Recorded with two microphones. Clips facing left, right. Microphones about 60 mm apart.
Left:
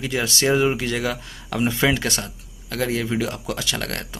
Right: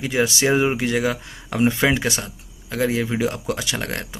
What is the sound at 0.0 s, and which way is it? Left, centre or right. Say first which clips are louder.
Speech: right 2 dB; right.